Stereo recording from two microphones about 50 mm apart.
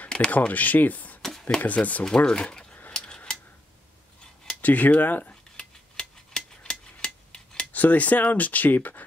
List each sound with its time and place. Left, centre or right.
0.1 s speech: centre
0.5 s speech: left
2.0 s speech: centre
2.9 s a sound: centre
4.6 s speech: left
5.3 s cutlery: centre
7.7 s speech: left